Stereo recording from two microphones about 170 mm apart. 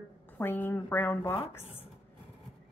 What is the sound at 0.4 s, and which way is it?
A woman's voice, 10° left (ahead or behind).